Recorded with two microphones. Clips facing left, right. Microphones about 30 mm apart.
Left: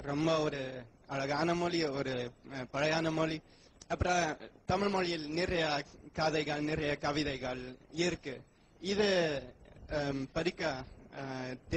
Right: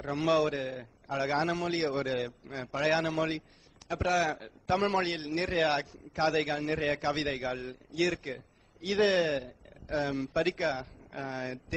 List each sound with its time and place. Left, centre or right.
0.0 s a man's voice: centre
3.3 s a sound: right
3.9 s a man's voice: centre
4.8 s a man's voice: right
5.3 s a man's voice: centre